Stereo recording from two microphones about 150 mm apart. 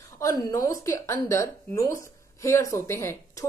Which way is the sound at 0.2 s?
20° left (ahead or behind).